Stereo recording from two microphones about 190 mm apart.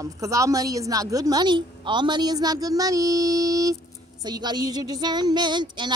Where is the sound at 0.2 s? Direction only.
15° right (ahead or behind).